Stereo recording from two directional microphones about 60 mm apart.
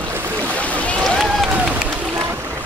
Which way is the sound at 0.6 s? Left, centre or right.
Left.